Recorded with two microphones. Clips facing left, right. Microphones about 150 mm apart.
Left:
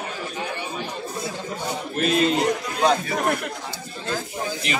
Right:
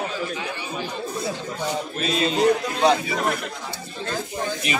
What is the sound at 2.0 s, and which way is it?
Speech, 70° left (ahead or behind).